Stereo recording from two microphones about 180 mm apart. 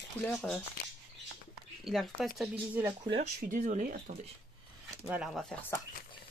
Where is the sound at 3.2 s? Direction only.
45° right (ahead or behind).